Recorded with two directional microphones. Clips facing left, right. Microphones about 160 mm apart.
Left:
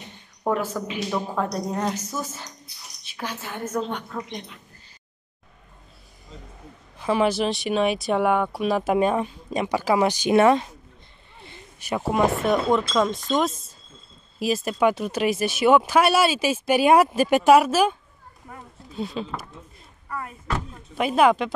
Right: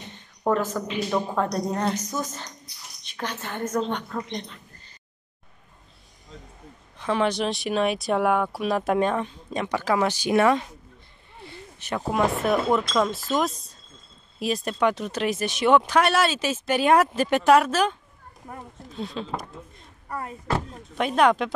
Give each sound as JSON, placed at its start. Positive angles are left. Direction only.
{"t": 0.5, "sound": "speech", "side_deg": 10}
{"t": 7.0, "sound": "speech", "side_deg": 5}
{"t": 11.8, "sound": "speech", "side_deg": 5}
{"t": 18.9, "sound": "speech", "side_deg": 5}
{"t": 20.1, "sound": "speech", "side_deg": -30}
{"t": 21.0, "sound": "speech", "side_deg": 5}